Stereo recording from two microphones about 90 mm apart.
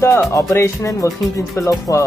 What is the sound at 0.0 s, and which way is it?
Speech, 30° left (ahead or behind).